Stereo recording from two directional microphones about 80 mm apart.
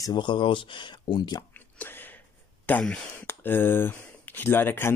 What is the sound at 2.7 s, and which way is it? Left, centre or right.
A man's voice, left.